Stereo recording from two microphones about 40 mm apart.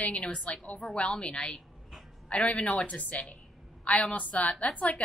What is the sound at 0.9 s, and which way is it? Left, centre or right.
Speech, left.